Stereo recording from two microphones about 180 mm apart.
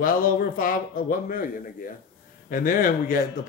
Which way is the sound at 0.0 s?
50° left (ahead or behind).